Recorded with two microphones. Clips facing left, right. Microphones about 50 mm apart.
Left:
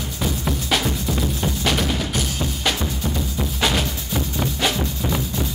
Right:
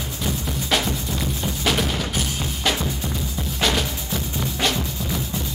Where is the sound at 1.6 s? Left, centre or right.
Centre.